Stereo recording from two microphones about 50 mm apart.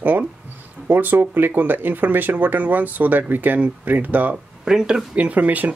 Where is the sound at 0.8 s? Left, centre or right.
Right.